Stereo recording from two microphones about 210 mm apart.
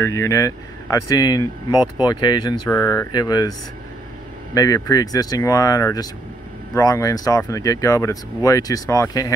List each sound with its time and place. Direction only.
0.0 s speech: 15° left (ahead or behind)
4.6 s speech: 15° left (ahead or behind)